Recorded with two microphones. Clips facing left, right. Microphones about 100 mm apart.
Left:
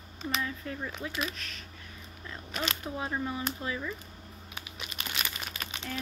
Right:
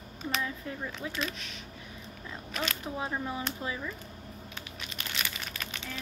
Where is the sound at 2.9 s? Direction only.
15° right (ahead or behind).